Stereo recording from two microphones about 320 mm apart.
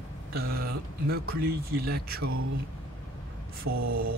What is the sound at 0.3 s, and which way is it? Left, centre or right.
Speech, right.